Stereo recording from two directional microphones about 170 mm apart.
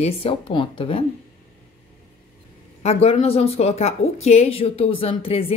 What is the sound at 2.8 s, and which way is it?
Speech, 35° left (ahead or behind).